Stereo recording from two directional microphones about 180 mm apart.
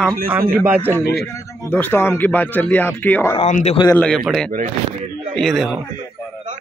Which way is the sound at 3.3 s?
40° left (ahead or behind).